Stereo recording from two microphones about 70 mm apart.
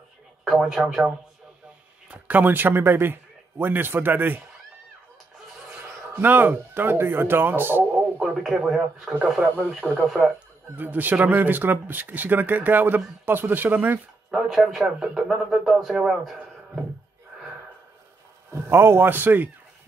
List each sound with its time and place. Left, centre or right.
0.5 s speech: centre
2.0 s a man's voice: right
5.8 s speech: right
8.2 s speech: centre
9.8 s speech: left
10.8 s speech: right
14.3 s speech: centre
18.5 s a man's voice: right